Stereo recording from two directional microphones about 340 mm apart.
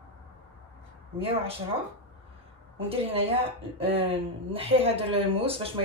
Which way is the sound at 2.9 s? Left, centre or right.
Centre.